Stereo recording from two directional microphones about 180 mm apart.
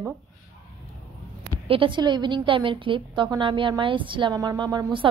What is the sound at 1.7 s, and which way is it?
A woman's voice, 30° right (ahead or behind).